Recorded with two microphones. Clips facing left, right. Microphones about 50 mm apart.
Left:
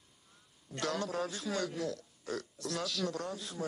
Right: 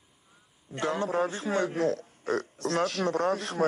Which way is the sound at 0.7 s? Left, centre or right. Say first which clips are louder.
Right 7 dB; right.